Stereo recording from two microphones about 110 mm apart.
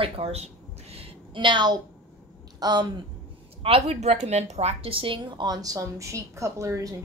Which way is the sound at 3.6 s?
65° right (ahead or behind).